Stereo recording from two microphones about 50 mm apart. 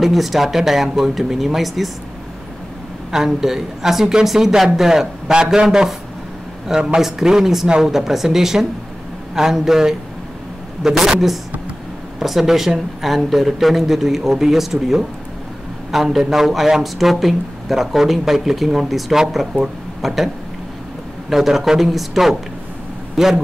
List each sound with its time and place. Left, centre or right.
0.0 s speech: centre
3.1 s speech: centre
21.3 s speech: centre